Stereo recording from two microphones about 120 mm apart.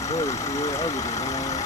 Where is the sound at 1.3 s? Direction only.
80° left.